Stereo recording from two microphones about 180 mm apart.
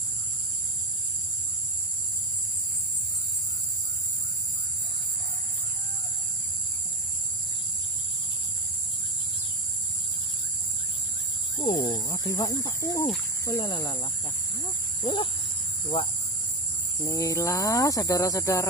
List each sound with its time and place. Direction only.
11.5 s speech: 25° left (ahead or behind)
17.0 s speech: 15° left (ahead or behind)